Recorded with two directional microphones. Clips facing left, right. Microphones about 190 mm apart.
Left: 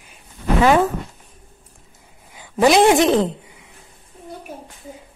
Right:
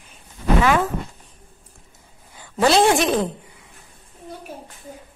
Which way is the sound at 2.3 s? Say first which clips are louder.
Left 3 dB; 15° left (ahead or behind).